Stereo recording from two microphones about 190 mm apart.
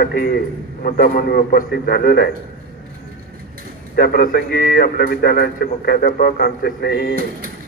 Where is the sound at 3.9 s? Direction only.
50° left (ahead or behind).